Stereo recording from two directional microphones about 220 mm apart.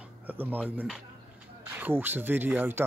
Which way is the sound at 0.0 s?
10° right (ahead or behind).